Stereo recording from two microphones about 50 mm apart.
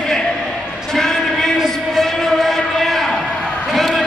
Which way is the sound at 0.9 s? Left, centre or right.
Centre.